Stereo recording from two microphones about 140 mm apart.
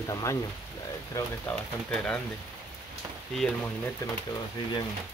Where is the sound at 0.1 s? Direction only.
25° left (ahead or behind).